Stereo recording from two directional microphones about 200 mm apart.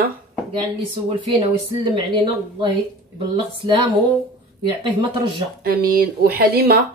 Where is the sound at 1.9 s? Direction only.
20° right (ahead or behind).